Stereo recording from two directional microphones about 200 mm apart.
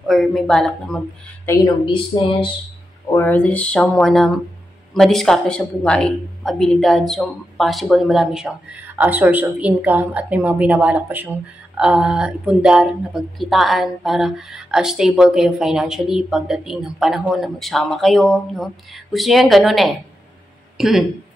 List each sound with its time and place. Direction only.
0.0 s speech: centre (ahead or behind)
1.5 s speech: 20° left (ahead or behind)
3.1 s speech: 10° left (ahead or behind)